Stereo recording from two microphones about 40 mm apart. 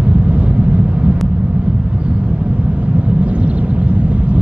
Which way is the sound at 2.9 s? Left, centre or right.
Right.